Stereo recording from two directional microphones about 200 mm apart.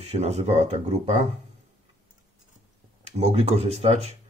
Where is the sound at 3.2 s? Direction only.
30° right (ahead or behind).